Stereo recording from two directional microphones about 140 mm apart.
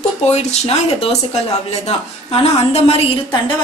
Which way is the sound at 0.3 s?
50° left (ahead or behind).